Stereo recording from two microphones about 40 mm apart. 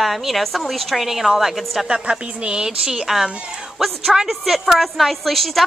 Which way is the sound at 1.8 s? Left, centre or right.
Right.